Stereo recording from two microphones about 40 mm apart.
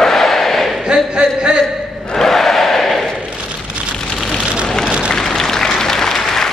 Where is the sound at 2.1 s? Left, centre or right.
Centre.